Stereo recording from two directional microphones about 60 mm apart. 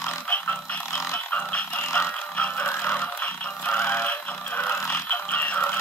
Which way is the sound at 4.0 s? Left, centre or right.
Left.